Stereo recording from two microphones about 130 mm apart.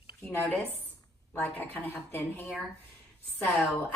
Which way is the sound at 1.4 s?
15° left (ahead or behind).